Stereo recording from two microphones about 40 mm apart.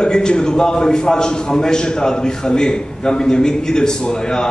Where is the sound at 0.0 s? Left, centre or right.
Centre.